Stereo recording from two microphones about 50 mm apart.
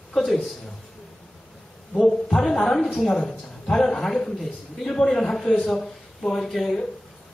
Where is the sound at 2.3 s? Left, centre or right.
Centre.